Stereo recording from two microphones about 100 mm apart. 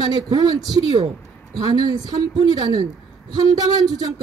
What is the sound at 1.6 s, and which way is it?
A woman's voice, 40° right (ahead or behind).